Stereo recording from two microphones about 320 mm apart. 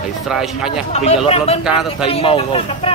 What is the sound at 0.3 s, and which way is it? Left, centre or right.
Speech, centre.